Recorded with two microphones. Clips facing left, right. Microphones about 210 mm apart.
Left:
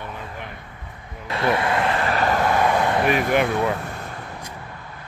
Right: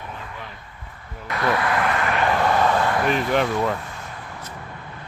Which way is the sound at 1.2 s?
25° left (ahead or behind).